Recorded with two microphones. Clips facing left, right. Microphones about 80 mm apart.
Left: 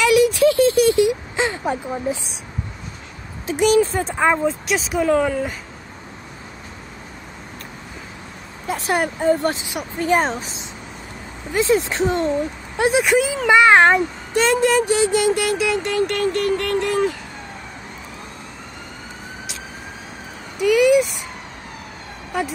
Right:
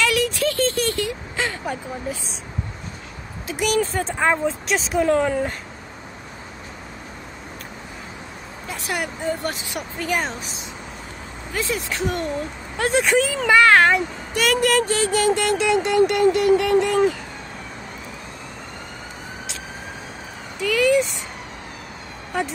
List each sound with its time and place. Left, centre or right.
0.0 s a sound: centre
3.4 s a woman's voice: left
3.8 s speech: centre
8.6 s a woman's voice: left
12.7 s speech: centre
15.3 s speech: centre
20.6 s speech: centre